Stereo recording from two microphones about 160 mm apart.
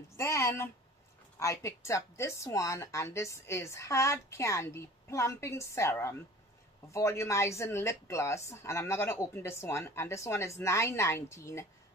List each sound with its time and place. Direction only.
0.2 s speech: 15° left (ahead or behind)